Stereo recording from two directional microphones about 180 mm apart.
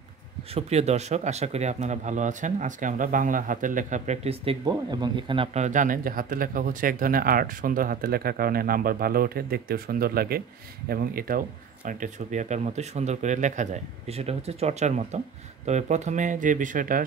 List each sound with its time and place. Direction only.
0.6 s speech: 35° right (ahead or behind)
4.6 s speech: 25° right (ahead or behind); by 17.0 s 50° right (ahead or behind)